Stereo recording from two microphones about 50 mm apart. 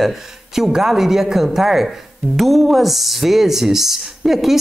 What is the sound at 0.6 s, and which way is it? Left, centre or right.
Speech, centre.